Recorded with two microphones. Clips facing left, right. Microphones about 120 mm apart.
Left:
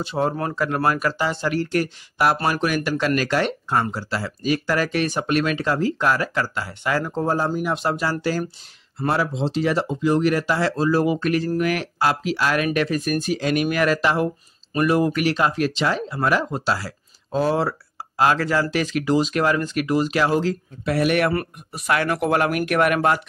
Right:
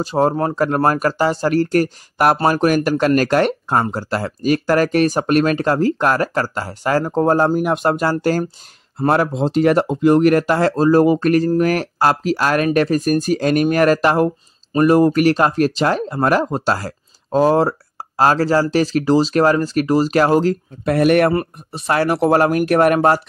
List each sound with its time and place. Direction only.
0.0 s speech: 40° right (ahead or behind)
21.3 s speech: 30° right (ahead or behind)